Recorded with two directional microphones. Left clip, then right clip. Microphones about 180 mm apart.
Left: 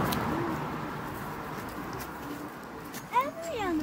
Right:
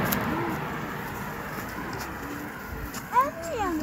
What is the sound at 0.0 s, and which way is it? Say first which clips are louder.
Vehicle: right 2 dB; 40° left (ahead or behind).